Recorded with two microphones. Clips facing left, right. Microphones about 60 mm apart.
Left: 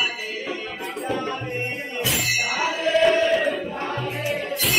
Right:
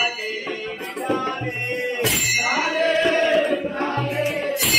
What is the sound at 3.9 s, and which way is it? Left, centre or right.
Music, centre.